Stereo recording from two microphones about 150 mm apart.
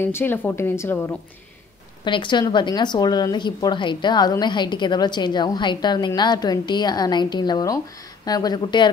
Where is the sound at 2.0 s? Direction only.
30° left (ahead or behind).